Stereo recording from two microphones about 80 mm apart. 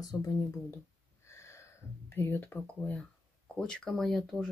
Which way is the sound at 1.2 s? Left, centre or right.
Left.